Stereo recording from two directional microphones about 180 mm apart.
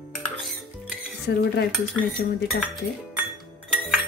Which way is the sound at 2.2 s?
55° left (ahead or behind).